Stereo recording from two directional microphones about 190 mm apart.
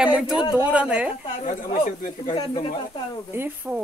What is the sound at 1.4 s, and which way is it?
Speech, 40° left (ahead or behind).